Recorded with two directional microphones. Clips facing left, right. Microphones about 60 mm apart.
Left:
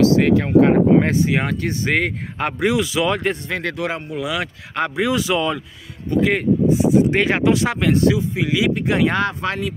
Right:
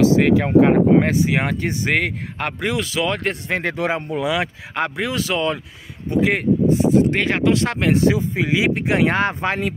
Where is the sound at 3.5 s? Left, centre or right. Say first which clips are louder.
Right 2 dB; right.